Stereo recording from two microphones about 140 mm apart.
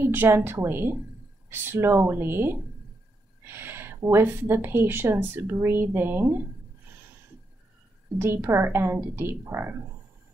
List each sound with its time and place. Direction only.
0.0 s a woman's voice: 15° right (ahead or behind)
8.2 s a woman's voice: 15° right (ahead or behind)